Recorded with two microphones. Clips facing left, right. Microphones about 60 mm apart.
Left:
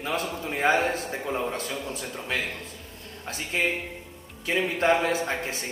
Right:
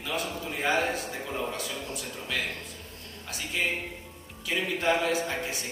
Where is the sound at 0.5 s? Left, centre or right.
Left.